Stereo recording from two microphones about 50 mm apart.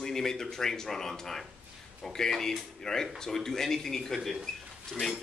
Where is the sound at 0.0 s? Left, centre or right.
Centre.